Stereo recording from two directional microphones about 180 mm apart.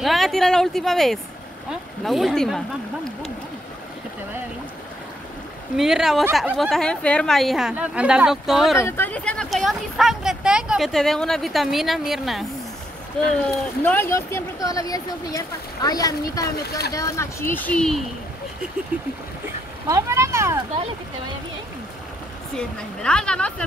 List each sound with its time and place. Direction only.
0.0 s speech: centre (ahead or behind)
5.8 s speech: centre (ahead or behind)
8.7 s speech: 15° left (ahead or behind)
13.8 s speech: 10° left (ahead or behind)
16.4 s speech: 60° left (ahead or behind)
16.9 s speech: 15° left (ahead or behind)
19.9 s speech: 15° right (ahead or behind)
22.6 s speech: 5° left (ahead or behind)